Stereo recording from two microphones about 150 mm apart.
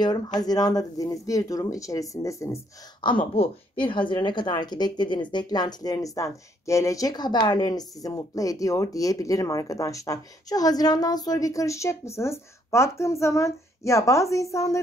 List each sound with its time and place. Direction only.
0.0 s speech: 30° left (ahead or behind)
3.0 s a woman's voice: 35° left (ahead or behind)